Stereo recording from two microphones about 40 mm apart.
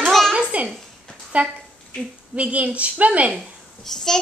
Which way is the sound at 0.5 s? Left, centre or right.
Right.